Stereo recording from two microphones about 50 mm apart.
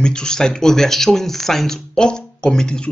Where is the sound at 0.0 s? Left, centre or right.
Centre.